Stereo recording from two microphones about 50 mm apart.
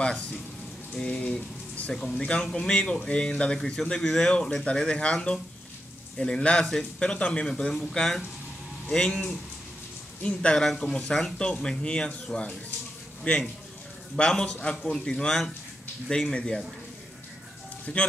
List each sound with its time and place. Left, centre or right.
0.9 s speech: centre
1.2 s rain on surface: left
2.1 s a man's voice: centre
10.6 s speech: centre
11.3 s speech: centre
13.3 s speech: left; by 16.3 s centre
17.9 s speech: left